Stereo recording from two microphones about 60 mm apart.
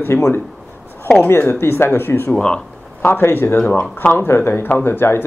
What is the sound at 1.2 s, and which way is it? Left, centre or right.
Speech, left.